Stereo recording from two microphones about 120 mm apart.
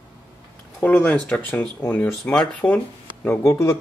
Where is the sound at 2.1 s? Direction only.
5° left (ahead or behind).